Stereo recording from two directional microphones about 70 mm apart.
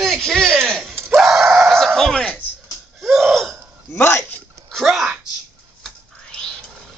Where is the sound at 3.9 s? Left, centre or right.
Left.